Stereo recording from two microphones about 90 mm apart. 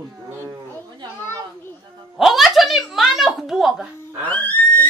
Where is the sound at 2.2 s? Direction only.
5° right (ahead or behind).